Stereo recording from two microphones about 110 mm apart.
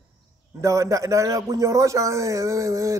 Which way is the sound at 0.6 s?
30° right (ahead or behind).